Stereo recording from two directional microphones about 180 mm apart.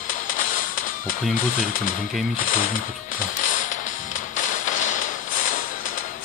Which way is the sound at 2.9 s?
45° left (ahead or behind).